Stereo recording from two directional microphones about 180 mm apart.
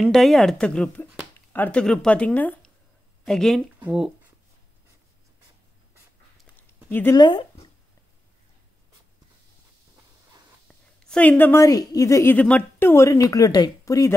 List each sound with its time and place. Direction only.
0.0 s speech: centre (ahead or behind)
6.9 s speech: 10° left (ahead or behind)
7.2 s speech: 25° left (ahead or behind)
10.7 s a woman's voice: 5° left (ahead or behind)